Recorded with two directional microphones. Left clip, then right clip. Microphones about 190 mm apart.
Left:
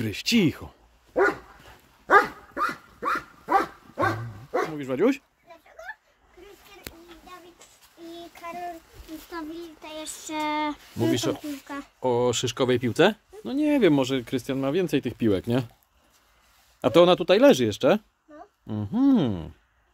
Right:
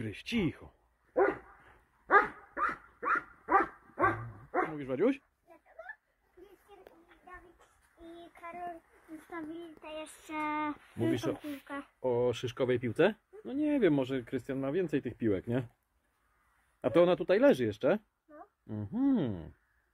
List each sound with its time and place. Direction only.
0.0 s bow-wow: 30° left (ahead or behind)
2.0 s dog: 70° left (ahead or behind)
4.0 s dog: 40° left (ahead or behind)
4.7 s speech: 5° left (ahead or behind)
9.3 s speech: 10° left (ahead or behind)
16.8 s speech: 15° left (ahead or behind)